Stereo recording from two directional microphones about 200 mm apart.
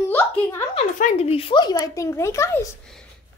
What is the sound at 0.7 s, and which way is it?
Speech, 35° left (ahead or behind).